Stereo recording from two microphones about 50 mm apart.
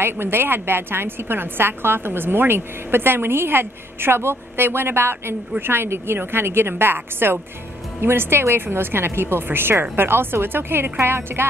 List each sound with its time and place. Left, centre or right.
0.0 s a woman's voice: right